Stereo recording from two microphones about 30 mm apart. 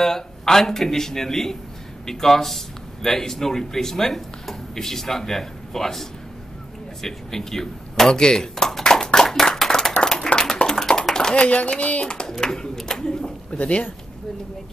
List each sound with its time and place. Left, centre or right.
0.0 s speech: centre
9.1 s clapping: centre
10.0 s a sound: left
11.4 s speech: left
12.3 s speech: left
12.8 s pigeon: left
13.5 s speech: left